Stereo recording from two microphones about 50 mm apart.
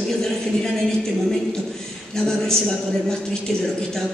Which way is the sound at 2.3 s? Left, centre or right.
Centre.